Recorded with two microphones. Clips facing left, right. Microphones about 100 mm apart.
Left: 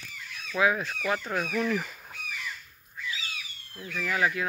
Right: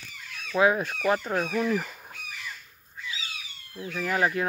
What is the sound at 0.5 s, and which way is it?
Goose, 35° right (ahead or behind).